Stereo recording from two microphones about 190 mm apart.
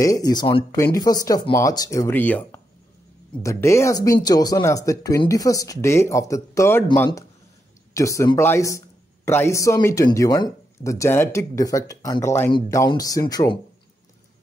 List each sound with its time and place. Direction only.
0.0 s speech: 20° left (ahead or behind)